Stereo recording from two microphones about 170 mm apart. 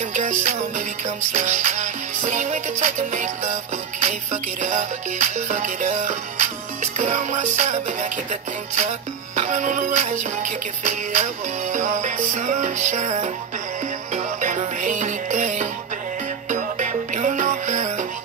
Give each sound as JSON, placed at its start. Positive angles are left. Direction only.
{"t": 0.1, "sound": "music", "side_deg": -45}